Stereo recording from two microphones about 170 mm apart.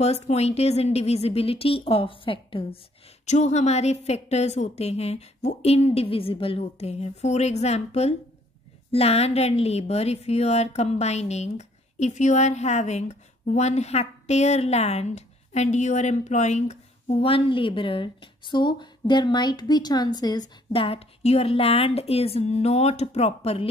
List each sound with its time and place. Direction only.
0.0 s a woman's voice: 40° left (ahead or behind)
3.3 s a woman's voice: 40° left (ahead or behind)